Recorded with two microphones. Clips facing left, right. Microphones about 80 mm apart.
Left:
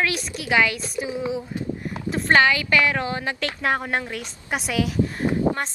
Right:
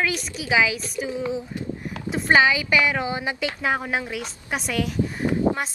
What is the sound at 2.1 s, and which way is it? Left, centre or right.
A woman's voice, centre.